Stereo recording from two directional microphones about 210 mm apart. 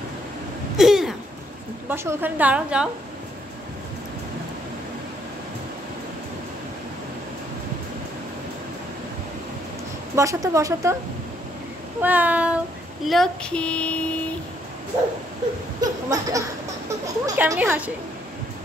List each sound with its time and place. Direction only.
0.7 s a sound: centre (ahead or behind)
1.9 s a woman's voice: 10° right (ahead or behind)
10.1 s a woman's voice: 15° right (ahead or behind)
12.0 s child singing: 10° right (ahead or behind)
15.8 s a woman's voice: 15° right (ahead or behind)